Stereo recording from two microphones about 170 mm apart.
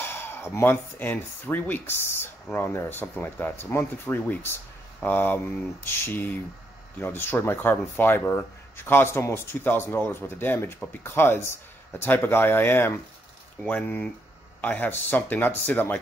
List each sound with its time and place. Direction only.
0.0 s speech: 15° left (ahead or behind)